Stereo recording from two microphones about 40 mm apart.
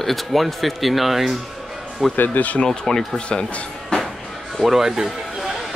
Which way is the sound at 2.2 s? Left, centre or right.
Left.